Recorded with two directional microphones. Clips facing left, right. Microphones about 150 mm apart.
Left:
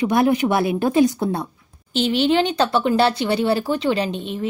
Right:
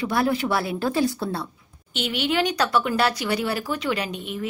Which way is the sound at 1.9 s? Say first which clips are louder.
Left 7 dB; 30° left (ahead or behind).